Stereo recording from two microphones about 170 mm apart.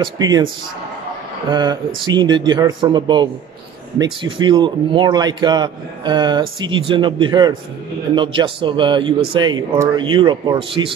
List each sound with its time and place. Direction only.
0.0 s a man's voice: 25° right (ahead or behind)
1.5 s a man's voice: 25° right (ahead or behind)